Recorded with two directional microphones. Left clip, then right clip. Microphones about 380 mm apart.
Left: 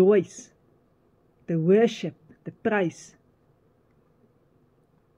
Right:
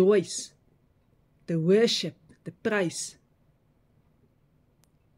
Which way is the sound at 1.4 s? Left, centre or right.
Centre.